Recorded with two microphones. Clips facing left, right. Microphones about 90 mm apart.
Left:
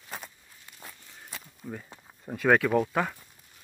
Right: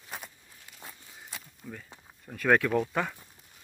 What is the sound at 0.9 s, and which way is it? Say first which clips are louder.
Walk: even; 10° right (ahead or behind).